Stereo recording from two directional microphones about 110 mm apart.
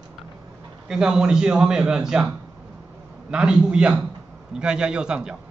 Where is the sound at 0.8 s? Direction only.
5° right (ahead or behind).